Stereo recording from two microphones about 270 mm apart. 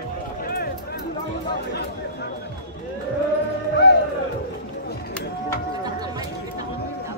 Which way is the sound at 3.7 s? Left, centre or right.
Left.